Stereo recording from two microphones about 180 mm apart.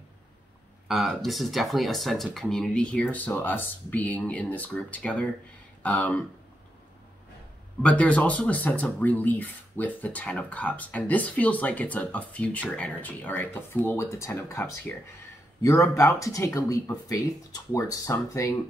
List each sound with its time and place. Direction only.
0.8 s speech: centre (ahead or behind)
7.8 s speech: 5° left (ahead or behind)